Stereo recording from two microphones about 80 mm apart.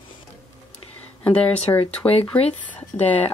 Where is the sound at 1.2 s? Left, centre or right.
Centre.